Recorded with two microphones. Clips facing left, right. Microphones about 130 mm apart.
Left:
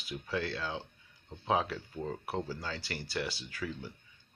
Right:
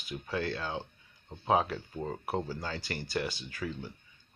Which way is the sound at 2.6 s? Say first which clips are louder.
Right 2 dB; 50° right (ahead or behind).